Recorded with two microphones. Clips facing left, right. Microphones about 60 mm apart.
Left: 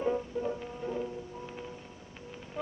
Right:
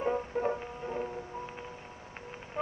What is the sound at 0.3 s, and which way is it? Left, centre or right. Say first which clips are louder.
Music: right 3 dB; right.